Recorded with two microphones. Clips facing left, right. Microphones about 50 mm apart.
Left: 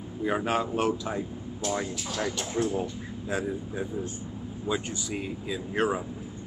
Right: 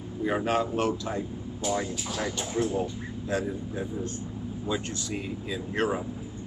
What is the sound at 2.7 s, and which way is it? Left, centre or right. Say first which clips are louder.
Speech: right 1 dB; centre.